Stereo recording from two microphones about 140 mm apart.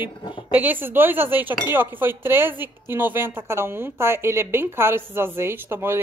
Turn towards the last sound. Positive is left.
turn(degrees=-15)  # may be behind; listen again after turning